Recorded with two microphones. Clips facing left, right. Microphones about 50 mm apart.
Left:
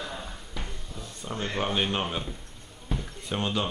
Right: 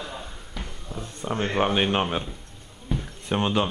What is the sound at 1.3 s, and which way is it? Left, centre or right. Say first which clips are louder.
Speech: right 6 dB; right.